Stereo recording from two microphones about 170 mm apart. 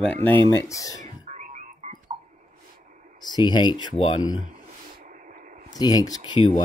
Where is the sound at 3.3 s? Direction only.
25° left (ahead or behind).